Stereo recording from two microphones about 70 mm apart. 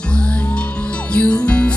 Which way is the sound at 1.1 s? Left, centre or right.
Centre.